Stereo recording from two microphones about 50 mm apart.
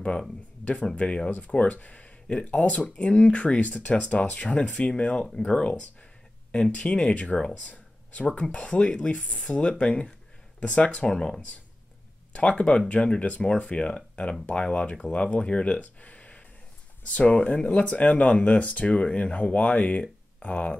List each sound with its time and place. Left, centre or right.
0.9 s speech: left
11.1 s speech: centre
12.3 s speech: left